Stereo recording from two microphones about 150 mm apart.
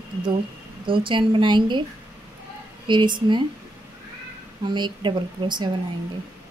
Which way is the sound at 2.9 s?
30° right (ahead or behind).